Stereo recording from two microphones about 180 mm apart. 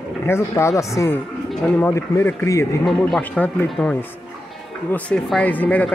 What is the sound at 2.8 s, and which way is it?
Speech, centre (ahead or behind).